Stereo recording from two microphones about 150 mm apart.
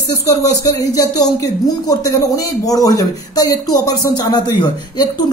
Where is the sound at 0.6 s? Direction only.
25° left (ahead or behind).